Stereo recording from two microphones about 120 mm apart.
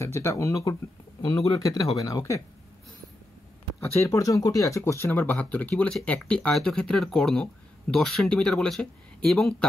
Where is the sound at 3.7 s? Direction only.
25° left (ahead or behind).